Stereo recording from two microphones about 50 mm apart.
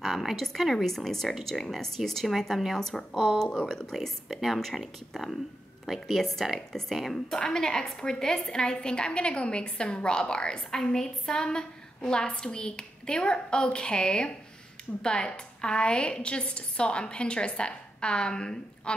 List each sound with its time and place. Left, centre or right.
0.0 s a woman's voice: centre